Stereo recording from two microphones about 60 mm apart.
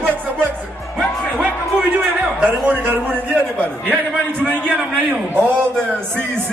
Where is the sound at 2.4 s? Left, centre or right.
Right.